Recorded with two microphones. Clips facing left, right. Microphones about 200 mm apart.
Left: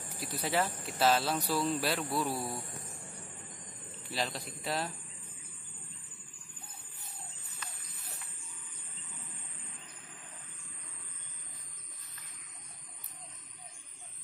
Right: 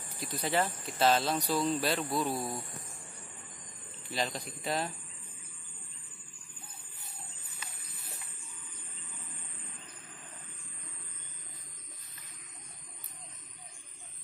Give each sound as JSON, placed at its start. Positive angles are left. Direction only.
{"t": 0.2, "sound": "speech", "side_deg": 5}
{"t": 2.0, "sound": "speech", "side_deg": -15}
{"t": 4.1, "sound": "speech", "side_deg": 0}